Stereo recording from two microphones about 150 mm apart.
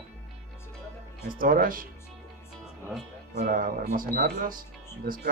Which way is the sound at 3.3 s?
70° right (ahead or behind).